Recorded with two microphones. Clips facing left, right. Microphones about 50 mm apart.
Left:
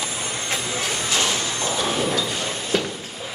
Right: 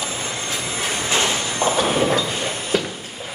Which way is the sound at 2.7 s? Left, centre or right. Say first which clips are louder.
Right 1 dB; centre.